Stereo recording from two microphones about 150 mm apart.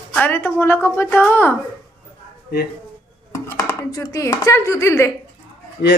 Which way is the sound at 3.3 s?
15° left (ahead or behind).